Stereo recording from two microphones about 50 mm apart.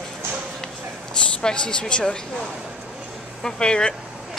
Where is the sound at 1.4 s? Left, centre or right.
Centre.